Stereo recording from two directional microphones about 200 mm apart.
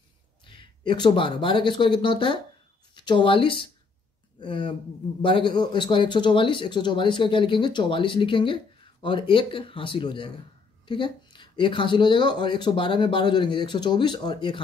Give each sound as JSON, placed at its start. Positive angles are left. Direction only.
{"t": 0.4, "sound": "speech", "side_deg": 25}